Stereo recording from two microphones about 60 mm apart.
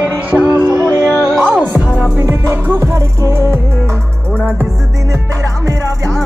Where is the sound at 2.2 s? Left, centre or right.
Right.